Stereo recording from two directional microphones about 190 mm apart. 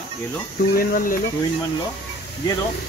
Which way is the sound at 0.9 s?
45° left (ahead or behind).